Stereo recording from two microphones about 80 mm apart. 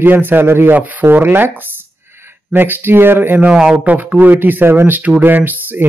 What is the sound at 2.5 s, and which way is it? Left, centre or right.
Speech, right.